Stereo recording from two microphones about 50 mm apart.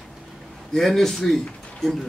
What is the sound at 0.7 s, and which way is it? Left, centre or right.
Speech, centre.